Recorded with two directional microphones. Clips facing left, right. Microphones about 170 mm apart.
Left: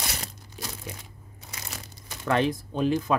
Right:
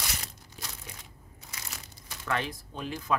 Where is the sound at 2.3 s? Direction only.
25° left (ahead or behind).